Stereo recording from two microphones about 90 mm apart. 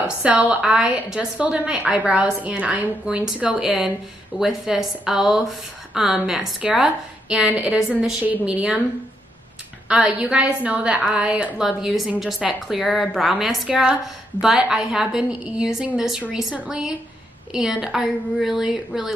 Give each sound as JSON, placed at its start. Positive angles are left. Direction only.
{"t": 0.0, "sound": "speech", "side_deg": -15}
{"t": 9.8, "sound": "a woman's voice", "side_deg": -10}